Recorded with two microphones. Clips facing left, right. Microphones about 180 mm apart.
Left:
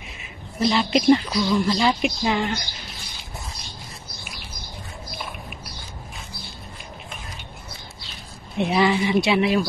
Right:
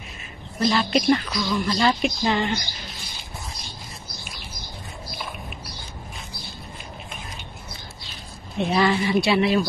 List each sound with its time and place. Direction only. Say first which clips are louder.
0.6 s speech: left 1 dB; 20° left (ahead or behind)
2.2 s speech: right 1 dB; centre (ahead or behind)
8.5 s speech: left 1 dB; 15° left (ahead or behind)